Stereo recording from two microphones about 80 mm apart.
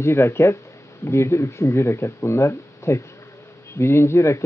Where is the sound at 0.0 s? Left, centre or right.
Left.